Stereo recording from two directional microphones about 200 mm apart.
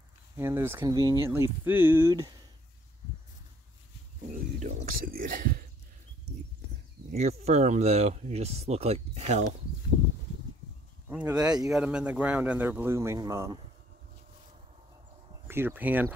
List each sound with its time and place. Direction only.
0.4 s speech: 10° right (ahead or behind)
4.3 s speech: 35° right (ahead or behind)
7.1 s speech: 35° right (ahead or behind)
11.1 s speech: 10° right (ahead or behind)
11.7 s speech: 5° right (ahead or behind)
15.4 s speech: 10° right (ahead or behind)